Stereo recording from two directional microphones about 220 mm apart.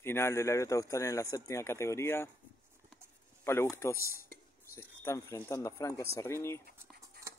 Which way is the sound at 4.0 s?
40° left (ahead or behind).